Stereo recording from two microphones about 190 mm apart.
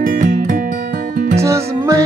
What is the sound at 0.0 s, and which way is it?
Music, 45° right (ahead or behind).